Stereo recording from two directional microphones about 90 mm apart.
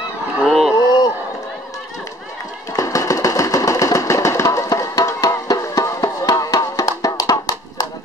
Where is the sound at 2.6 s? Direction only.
35° left (ahead or behind).